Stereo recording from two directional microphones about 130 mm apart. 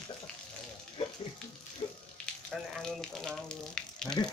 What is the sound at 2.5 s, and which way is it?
Speech, 5° left (ahead or behind).